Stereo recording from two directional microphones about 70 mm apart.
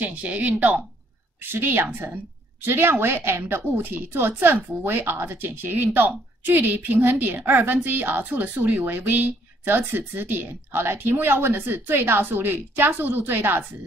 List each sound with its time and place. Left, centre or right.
0.0 s speech: centre
1.4 s a woman's voice: right